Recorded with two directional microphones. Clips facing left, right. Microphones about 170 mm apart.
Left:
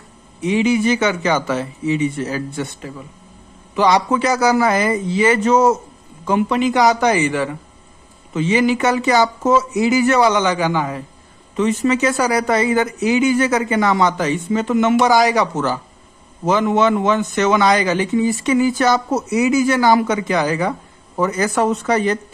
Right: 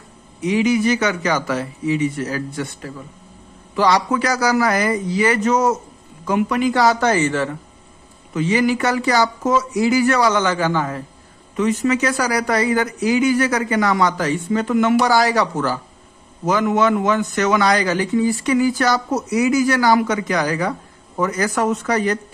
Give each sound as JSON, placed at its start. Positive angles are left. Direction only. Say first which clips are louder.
{"t": 0.4, "sound": "a man's voice", "louder": "left 1 dB", "side_deg": 25}
{"t": 11.5, "sound": "a man's voice", "louder": "left 1 dB", "side_deg": 30}